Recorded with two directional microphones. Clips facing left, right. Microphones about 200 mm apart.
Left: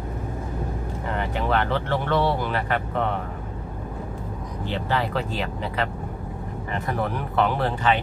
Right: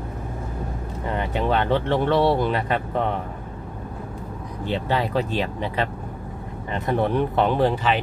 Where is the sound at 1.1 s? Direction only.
20° right (ahead or behind).